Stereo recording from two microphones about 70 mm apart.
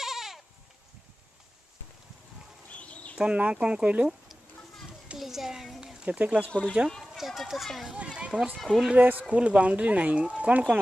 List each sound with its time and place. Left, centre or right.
0.0 s goat: centre
2.7 s bird: centre
3.2 s speech: centre
5.0 s a sound: centre
6.8 s speech: right
7.1 s speech: centre
7.9 s speech: centre
8.9 s speech: right